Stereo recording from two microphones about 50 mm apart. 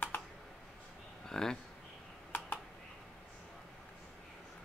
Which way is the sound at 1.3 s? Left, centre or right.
Centre.